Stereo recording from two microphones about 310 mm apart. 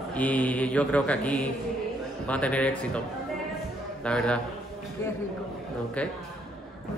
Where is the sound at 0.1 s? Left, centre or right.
Centre.